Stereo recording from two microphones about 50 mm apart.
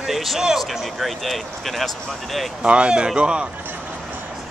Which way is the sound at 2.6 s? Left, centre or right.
Right.